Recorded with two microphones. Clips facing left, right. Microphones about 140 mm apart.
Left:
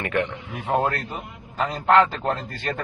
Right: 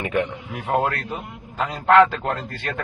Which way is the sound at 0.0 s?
10° right (ahead or behind).